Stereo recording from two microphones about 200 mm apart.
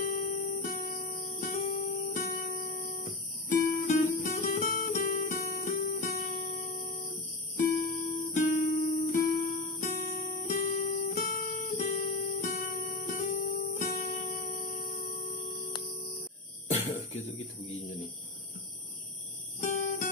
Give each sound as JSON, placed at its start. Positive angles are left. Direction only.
{"t": 0.0, "sound": "music", "side_deg": 40}
{"t": 14.3, "sound": "music", "side_deg": 50}
{"t": 17.1, "sound": "a sound", "side_deg": 30}